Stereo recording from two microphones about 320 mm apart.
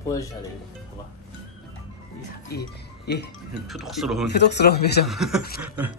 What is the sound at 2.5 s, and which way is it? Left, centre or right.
Speech, left.